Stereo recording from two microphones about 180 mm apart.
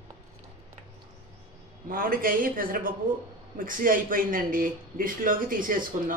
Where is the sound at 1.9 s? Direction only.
50° right (ahead or behind).